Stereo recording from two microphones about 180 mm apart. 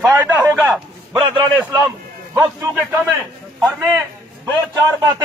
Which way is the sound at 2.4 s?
15° right (ahead or behind).